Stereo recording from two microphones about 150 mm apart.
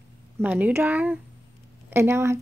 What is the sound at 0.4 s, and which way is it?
Speech, 10° right (ahead or behind).